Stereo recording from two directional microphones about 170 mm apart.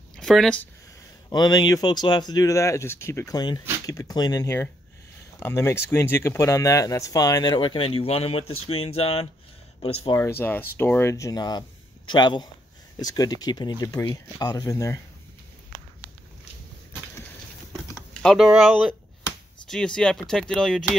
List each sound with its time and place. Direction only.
0.1 s a sound: centre (ahead or behind)
1.3 s speech: 25° left (ahead or behind)
10.1 s speech: 15° left (ahead or behind)
17.9 s speech: centre (ahead or behind)
19.7 s speech: 5° left (ahead or behind)